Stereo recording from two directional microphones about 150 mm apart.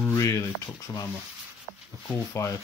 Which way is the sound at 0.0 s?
20° left (ahead or behind).